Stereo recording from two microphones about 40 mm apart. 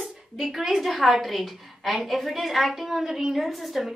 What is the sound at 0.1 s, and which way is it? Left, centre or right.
A woman's voice, centre.